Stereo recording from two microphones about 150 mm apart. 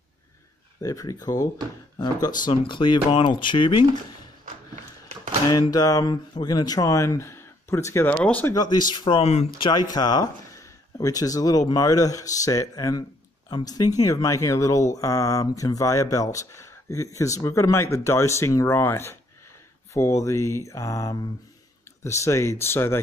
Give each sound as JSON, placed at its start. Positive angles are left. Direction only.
{"t": 0.8, "sound": "speech", "side_deg": 25}
{"t": 2.4, "sound": "speech", "side_deg": 35}
{"t": 5.5, "sound": "speech", "side_deg": 25}
{"t": 8.5, "sound": "speech", "side_deg": 30}
{"t": 9.7, "sound": "speech", "side_deg": 25}